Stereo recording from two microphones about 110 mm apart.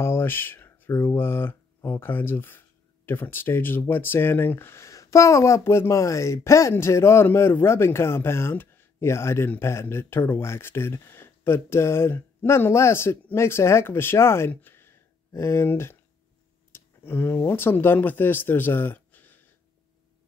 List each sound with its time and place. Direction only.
0.0 s speech: 20° left (ahead or behind)